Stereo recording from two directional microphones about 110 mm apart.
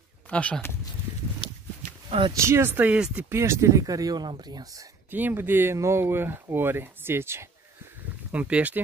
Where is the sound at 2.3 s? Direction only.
25° right (ahead or behind).